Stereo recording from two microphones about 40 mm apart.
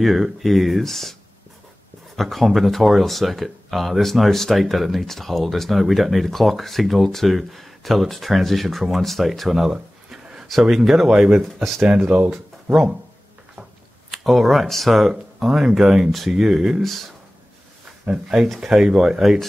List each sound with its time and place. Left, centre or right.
0.0 s speech: centre
2.1 s speech: centre
11.4 s speech: centre
11.9 s speech: right
14.1 s speech: centre
16.1 s speech: centre
16.3 s speech: centre
16.8 s speech: centre
18.6 s speech: centre